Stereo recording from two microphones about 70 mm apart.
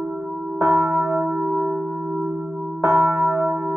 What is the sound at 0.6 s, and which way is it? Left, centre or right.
Church bell, right.